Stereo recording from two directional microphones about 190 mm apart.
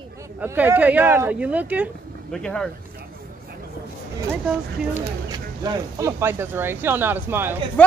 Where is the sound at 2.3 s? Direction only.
5° left (ahead or behind).